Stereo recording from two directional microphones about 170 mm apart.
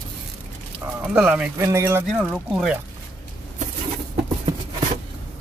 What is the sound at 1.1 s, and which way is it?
Speech, 5° right (ahead or behind).